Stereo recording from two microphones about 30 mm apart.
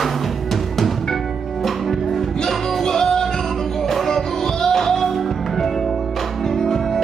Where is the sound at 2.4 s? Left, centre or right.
Centre.